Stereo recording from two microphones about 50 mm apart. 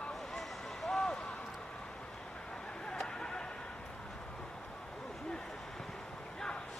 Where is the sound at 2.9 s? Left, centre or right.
Centre.